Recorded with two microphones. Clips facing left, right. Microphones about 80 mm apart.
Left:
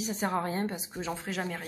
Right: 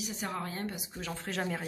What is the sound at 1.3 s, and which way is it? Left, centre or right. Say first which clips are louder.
Speech: right 3 dB; centre.